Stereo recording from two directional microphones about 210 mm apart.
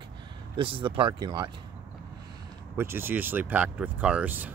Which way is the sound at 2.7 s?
10° right (ahead or behind).